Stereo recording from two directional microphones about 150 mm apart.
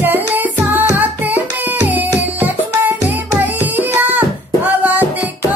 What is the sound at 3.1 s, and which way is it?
Hands, 10° right (ahead or behind).